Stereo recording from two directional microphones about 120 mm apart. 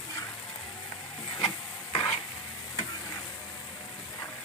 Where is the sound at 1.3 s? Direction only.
35° left (ahead or behind).